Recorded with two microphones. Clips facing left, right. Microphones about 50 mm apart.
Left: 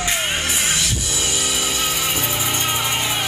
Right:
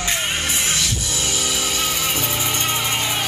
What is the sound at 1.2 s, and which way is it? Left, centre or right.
Music, centre.